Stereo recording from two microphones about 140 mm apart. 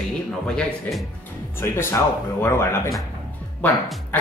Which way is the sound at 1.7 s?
20° left (ahead or behind).